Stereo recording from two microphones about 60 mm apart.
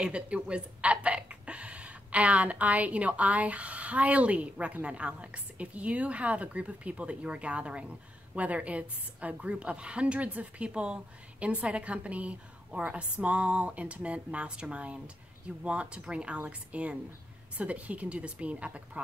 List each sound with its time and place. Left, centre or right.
0.0 s speech: centre